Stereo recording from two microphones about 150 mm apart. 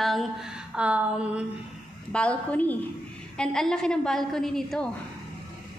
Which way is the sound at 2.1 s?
10° left (ahead or behind).